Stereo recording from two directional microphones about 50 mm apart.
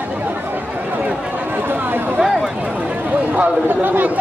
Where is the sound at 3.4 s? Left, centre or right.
Right.